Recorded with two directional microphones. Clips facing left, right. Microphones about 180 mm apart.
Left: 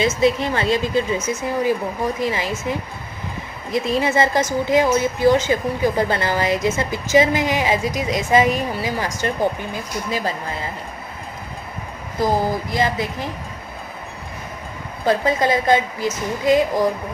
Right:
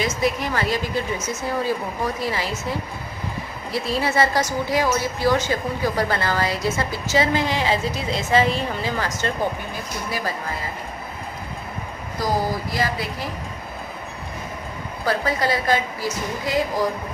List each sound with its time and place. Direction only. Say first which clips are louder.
0.0 s speech: left 5 dB; 25° left (ahead or behind)
3.7 s speech: left 3 dB; 20° left (ahead or behind)
12.2 s speech: left 4 dB; 20° left (ahead or behind)
15.0 s speech: left 4 dB; 20° left (ahead or behind)